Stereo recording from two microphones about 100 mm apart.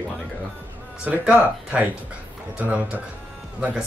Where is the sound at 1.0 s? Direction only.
15° right (ahead or behind).